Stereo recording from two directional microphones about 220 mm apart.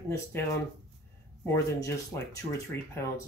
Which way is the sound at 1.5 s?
15° left (ahead or behind).